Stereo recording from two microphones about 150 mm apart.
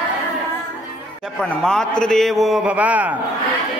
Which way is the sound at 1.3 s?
5° left (ahead or behind).